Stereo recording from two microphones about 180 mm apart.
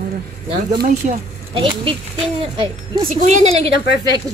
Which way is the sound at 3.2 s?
40° right (ahead or behind).